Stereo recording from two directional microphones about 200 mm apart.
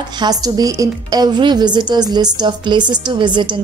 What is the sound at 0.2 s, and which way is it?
A woman's voice, 20° right (ahead or behind).